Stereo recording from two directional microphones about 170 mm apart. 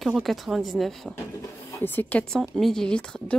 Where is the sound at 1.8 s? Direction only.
10° left (ahead or behind).